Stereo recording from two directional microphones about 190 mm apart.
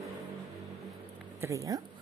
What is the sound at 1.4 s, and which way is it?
Speech, 15° right (ahead or behind).